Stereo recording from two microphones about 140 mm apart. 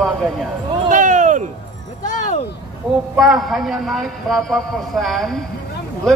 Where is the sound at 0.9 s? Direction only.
65° right (ahead or behind).